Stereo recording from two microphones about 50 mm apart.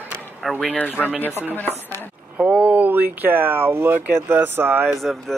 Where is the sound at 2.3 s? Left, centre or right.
Right.